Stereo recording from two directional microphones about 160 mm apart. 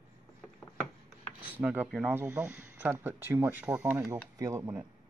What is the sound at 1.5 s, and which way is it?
Speech, 10° right (ahead or behind).